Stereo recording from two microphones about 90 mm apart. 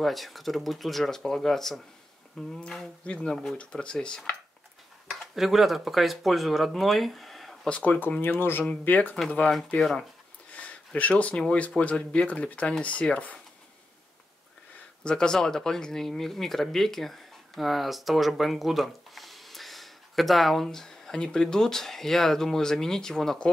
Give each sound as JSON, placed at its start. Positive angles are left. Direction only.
{"t": 0.0, "sound": "speech", "side_deg": 0}
{"t": 5.3, "sound": "speech", "side_deg": 0}
{"t": 7.7, "sound": "speech", "side_deg": 15}
{"t": 9.8, "sound": "speech", "side_deg": 5}
{"t": 10.5, "sound": "speech", "side_deg": 15}
{"t": 15.0, "sound": "speech", "side_deg": 10}